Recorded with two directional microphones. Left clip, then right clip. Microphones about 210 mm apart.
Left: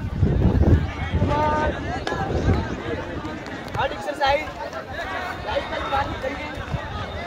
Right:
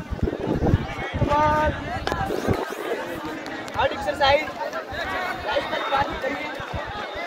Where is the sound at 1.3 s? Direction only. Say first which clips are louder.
Right 2 dB; centre (ahead or behind).